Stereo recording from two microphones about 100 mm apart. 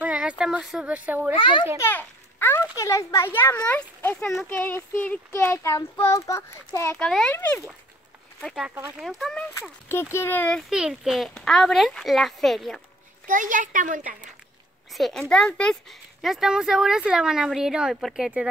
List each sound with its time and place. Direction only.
0.0 s speech: 10° right (ahead or behind)
1.3 s a child's voice: 55° left (ahead or behind)
1.8 s a child's voice: 20° left (ahead or behind)
2.8 s a child's voice: 30° left (ahead or behind); by 5.2 s 15° left (ahead or behind)
5.3 s a child's voice: 30° left (ahead or behind)
7.0 s speech: 10° left (ahead or behind)
8.4 s a child's voice: 5° left (ahead or behind)
9.5 s a child's voice: 25° left (ahead or behind)
10.7 s a child's voice: 5° right (ahead or behind)
15.0 s speech: 5° left (ahead or behind)
16.2 s speech: 5° right (ahead or behind)